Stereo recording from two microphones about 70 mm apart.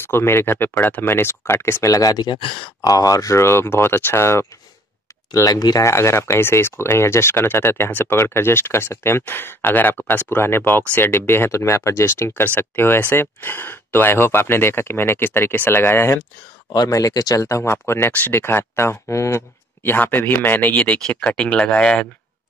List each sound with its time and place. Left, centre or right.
0.0 s speech: left
5.3 s speech: left
5.8 s speech: left
16.9 s speech: left
17.5 s speech: left
19.8 s speech: left; by 22.0 s centre